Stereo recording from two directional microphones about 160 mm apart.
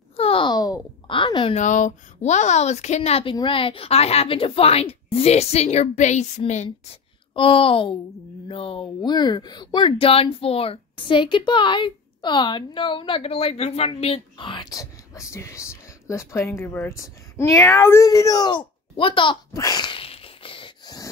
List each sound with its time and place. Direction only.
0.1 s a sound: 35° left (ahead or behind)
1.5 s speech: 50° left (ahead or behind)
7.3 s speech: 35° left (ahead or behind)
19.5 s sneeze: 20° left (ahead or behind)